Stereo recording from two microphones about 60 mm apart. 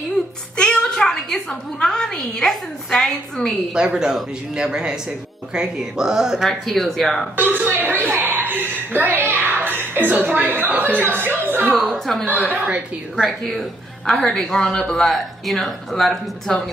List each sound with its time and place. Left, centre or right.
0.6 s a woman's voice: centre
3.7 s speech: centre
6.6 s speech: centre
7.3 s chuckle: right
11.9 s speech: centre
12.3 s a woman's voice: right
13.4 s a woman's voice: centre